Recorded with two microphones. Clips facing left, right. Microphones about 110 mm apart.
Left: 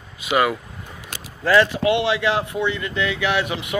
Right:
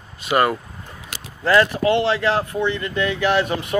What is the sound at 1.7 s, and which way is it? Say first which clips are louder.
Speech: right 1 dB; 15° left (ahead or behind).